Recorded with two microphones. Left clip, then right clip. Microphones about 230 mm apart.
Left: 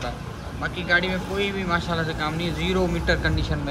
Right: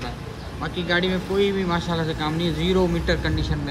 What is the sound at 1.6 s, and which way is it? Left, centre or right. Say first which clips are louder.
Speech: even; centre.